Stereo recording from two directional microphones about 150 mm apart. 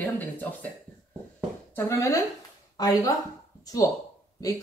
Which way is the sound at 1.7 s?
15° left (ahead or behind).